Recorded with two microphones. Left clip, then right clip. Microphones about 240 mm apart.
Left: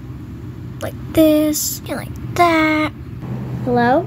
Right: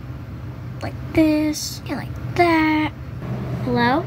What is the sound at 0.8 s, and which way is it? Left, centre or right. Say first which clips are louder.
A child's voice: left 4 dB; centre.